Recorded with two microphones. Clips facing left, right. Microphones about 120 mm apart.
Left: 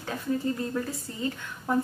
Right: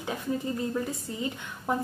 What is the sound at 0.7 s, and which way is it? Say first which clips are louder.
A woman's voice: right 1 dB; 15° right (ahead or behind).